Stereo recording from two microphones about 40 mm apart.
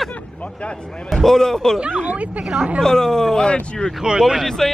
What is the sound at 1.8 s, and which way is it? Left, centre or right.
Speech, right.